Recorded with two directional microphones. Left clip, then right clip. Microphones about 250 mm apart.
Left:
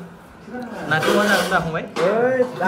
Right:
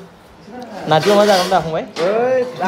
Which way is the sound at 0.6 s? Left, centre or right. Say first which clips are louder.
Right 6 dB; centre.